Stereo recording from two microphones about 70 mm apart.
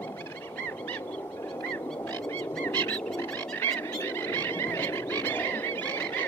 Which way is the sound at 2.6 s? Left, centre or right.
Left.